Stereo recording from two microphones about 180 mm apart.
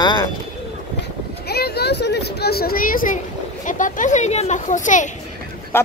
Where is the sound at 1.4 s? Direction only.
60° left (ahead or behind); by 5.0 s 45° left (ahead or behind).